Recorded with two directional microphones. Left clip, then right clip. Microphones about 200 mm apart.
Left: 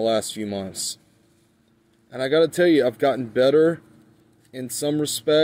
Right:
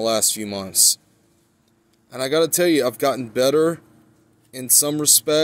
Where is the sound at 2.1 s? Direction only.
5° left (ahead or behind).